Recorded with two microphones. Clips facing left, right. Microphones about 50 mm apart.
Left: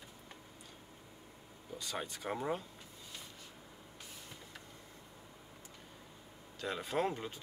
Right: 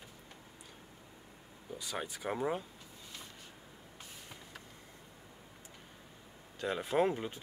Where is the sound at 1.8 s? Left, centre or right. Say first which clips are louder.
Right 2 dB; centre.